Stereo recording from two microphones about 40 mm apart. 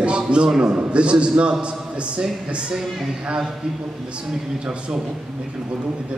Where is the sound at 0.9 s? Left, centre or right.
Right.